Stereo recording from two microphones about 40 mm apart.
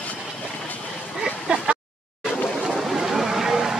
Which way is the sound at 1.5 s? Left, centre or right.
Right.